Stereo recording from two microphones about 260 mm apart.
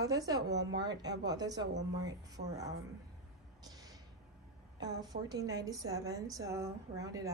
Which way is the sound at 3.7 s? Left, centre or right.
Centre.